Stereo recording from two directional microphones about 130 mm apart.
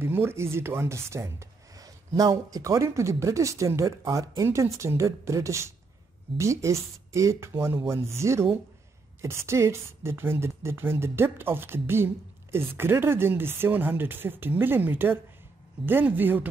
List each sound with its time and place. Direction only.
0.0 s a woman's voice: 15° right (ahead or behind)